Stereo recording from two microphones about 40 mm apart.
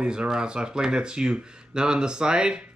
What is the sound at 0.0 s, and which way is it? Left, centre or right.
Speech, right.